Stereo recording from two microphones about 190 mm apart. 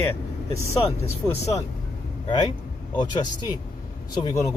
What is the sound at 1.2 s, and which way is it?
Speech, 15° left (ahead or behind).